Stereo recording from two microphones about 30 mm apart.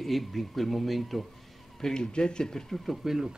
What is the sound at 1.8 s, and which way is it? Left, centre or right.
Speech, left.